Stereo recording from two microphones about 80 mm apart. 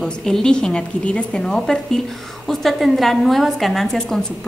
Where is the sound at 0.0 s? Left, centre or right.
Centre.